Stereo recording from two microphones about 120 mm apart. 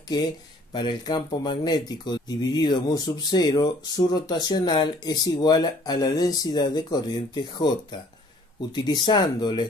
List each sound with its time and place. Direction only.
0.7 s speech: 40° left (ahead or behind)